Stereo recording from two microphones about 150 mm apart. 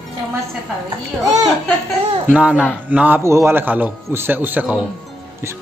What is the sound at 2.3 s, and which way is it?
A man's voice, 10° right (ahead or behind).